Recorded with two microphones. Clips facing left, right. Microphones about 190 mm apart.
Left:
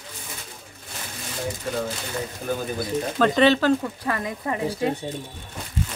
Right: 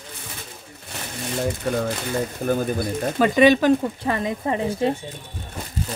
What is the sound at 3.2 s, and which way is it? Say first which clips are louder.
Speech: right 3 dB; 10° right (ahead or behind).